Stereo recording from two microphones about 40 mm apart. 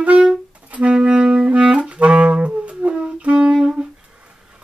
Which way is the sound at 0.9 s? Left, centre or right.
Right.